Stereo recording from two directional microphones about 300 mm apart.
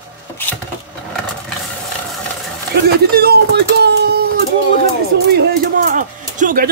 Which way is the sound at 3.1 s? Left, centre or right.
Right.